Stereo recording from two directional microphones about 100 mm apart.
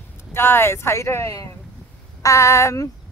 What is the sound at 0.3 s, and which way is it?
A woman's voice, 25° left (ahead or behind).